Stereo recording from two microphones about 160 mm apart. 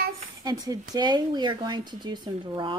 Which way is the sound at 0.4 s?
25° right (ahead or behind).